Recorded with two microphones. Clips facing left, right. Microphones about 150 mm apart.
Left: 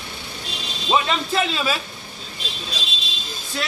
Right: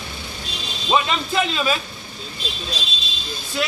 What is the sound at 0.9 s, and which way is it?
Speech, centre (ahead or behind).